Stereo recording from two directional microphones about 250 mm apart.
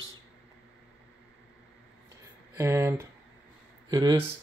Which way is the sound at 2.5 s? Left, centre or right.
Centre.